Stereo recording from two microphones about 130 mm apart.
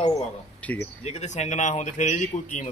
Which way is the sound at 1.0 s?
60° left (ahead or behind).